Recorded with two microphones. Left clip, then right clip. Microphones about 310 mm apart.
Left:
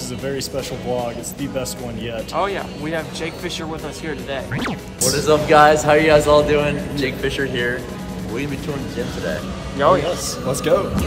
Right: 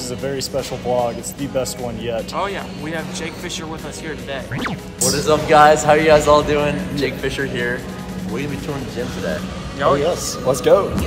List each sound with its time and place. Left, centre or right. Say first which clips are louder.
0.2 s speech: right 1 dB; centre
2.3 s speech: left 2 dB; centre
4.6 s speech: even; centre
9.8 s a man's voice: left 2 dB; centre
10.2 s speech: right 5 dB; centre